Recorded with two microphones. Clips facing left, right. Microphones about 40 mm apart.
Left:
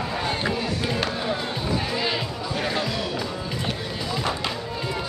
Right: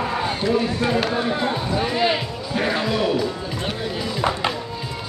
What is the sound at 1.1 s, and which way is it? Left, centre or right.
Music, centre.